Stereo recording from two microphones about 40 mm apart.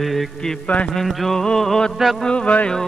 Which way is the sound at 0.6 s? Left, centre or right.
Left.